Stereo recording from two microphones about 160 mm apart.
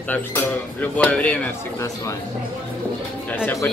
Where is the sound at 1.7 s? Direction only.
20° left (ahead or behind).